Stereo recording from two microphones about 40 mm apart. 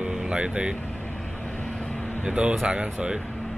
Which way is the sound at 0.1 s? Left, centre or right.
Centre.